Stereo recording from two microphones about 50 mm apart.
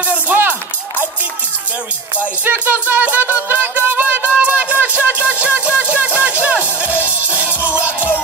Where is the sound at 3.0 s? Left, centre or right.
Right.